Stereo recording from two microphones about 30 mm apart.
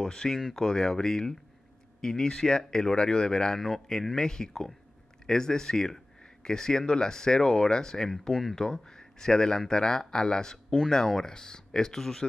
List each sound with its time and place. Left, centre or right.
0.0 s speech: left
3.5 s speech: centre
6.2 s a sound: left
6.9 s speech: left